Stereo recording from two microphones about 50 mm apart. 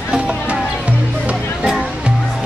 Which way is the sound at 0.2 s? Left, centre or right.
Right.